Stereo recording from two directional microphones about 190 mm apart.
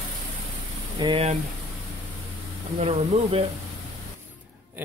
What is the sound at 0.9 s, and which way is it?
Speech, 25° right (ahead or behind).